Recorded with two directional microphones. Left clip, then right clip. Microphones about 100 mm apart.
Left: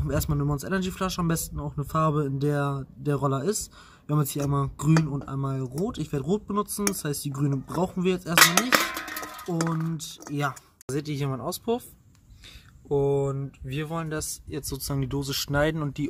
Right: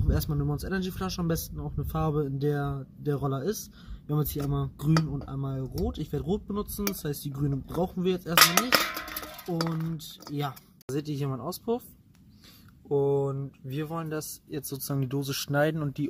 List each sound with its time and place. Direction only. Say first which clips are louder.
0.0 s a man's voice: left 4 dB; centre (ahead or behind)
8.5 s speech: left 2 dB; 25° right (ahead or behind)
8.8 s music: left 2 dB; 40° right (ahead or behind)
10.3 s a man's voice: left 5 dB; centre (ahead or behind)
10.9 s speech: left 2 dB; 20° right (ahead or behind)
12.8 s speech: left 1 dB; 25° right (ahead or behind)